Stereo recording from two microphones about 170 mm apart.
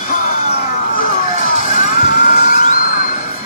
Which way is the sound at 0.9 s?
50° left (ahead or behind).